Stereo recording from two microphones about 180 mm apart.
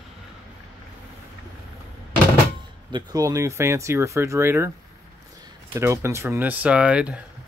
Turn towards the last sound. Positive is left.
turn(degrees=-5)  # may be behind; listen again after turning